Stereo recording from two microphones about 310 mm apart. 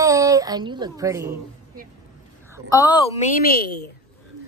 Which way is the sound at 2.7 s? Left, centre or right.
Centre.